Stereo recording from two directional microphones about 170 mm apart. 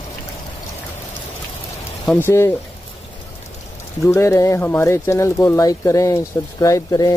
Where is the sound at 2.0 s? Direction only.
10° left (ahead or behind).